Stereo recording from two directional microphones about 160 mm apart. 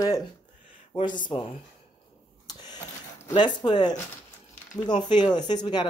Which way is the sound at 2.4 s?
25° left (ahead or behind).